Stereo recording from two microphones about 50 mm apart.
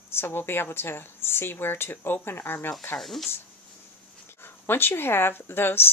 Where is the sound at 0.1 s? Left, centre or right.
Left.